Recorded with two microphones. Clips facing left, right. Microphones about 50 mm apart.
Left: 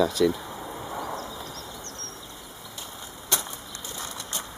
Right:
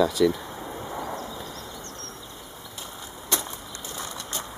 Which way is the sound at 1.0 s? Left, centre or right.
Centre.